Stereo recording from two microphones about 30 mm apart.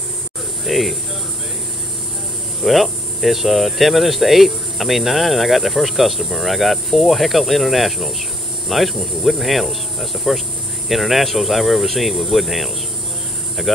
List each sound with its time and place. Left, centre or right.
0.7 s speech: centre
2.6 s speech: centre
12.1 s speech: centre